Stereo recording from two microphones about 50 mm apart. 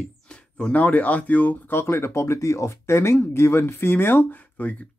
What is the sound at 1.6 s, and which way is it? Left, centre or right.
Speech, left.